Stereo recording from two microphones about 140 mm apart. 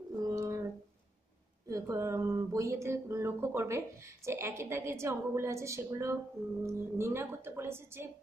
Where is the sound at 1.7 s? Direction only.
20° right (ahead or behind).